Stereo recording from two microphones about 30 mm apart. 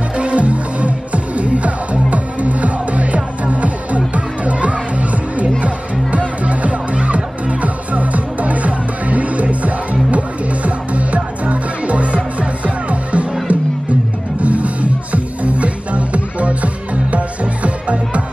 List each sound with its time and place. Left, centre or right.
0.2 s music: right